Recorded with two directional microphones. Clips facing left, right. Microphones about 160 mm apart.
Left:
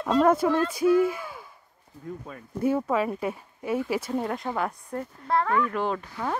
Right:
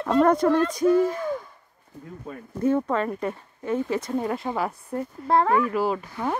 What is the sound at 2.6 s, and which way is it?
Speech, 10° left (ahead or behind).